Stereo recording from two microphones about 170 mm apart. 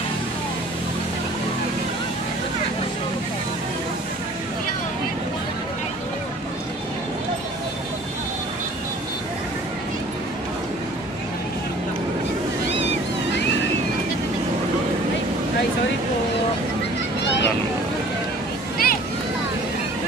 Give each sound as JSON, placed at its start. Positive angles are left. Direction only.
{"t": 18.8, "sound": "vehicle", "side_deg": 60}